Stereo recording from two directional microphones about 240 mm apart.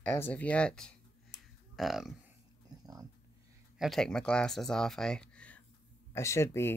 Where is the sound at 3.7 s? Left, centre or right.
Centre.